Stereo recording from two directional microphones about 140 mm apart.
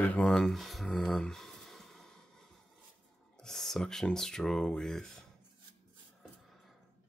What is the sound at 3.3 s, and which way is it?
Speech, 5° left (ahead or behind).